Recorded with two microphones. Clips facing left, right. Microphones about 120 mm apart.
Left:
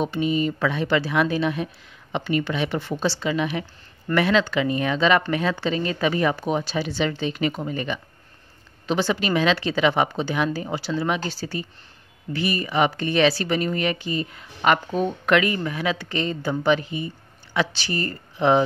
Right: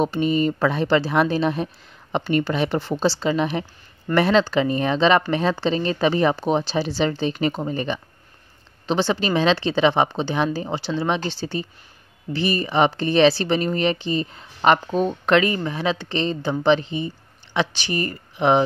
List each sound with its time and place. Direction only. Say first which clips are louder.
0.0 s speech: right 3 dB; 40° right (ahead or behind); by 18.6 s 20° right (ahead or behind)